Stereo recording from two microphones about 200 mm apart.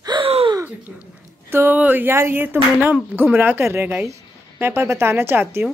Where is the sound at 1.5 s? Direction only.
10° right (ahead or behind).